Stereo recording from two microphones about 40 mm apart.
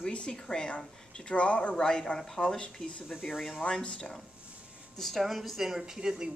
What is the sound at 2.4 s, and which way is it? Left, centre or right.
Speech, left.